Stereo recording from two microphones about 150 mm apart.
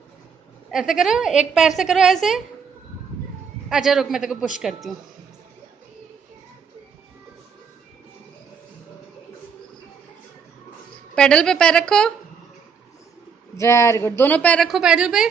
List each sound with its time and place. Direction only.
0.7 s a woman's voice: 5° right (ahead or behind)
3.6 s a woman's voice: centre (ahead or behind)
11.1 s a woman's voice: 5° left (ahead or behind)
13.6 s speech: 20° left (ahead or behind)
14.7 s a woman's voice: 5° right (ahead or behind)